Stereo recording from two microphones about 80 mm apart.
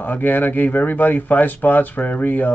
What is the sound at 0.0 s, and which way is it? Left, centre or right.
Speech, left.